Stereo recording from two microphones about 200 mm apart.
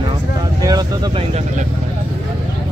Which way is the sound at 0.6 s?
20° right (ahead or behind).